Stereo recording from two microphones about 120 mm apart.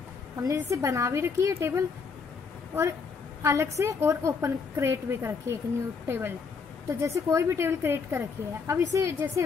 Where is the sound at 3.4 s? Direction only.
25° right (ahead or behind).